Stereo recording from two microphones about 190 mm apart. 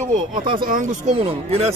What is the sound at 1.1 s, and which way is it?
Speech, 30° right (ahead or behind).